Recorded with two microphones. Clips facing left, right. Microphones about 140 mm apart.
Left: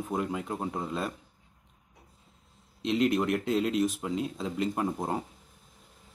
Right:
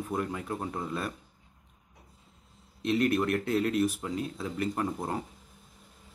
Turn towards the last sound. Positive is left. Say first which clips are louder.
# left 1 dB
turn(degrees=20)  # may be behind; listen again after turning